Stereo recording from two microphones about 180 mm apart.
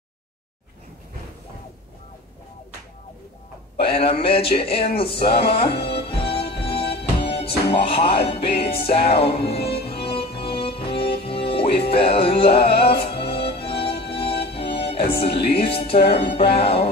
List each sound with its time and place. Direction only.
3.8 s speech: 30° left (ahead or behind)
5.8 s music: 30° left (ahead or behind)
16.5 s speech: 30° left (ahead or behind)